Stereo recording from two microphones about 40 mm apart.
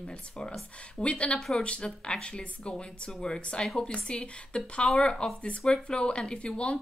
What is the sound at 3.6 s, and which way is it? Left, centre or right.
Speech, centre.